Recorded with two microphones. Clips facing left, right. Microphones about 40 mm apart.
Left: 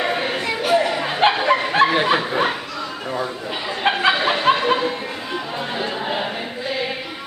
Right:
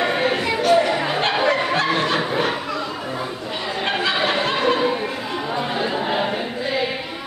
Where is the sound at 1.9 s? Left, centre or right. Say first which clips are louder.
Left 2 dB; centre.